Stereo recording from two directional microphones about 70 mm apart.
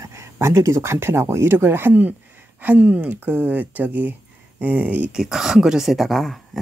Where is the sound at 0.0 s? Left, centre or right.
Right.